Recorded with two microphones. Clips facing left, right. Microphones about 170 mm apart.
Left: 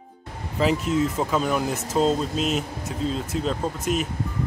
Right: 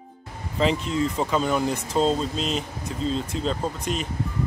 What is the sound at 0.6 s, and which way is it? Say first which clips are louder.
Speech: left 1 dB; 5° left (ahead or behind).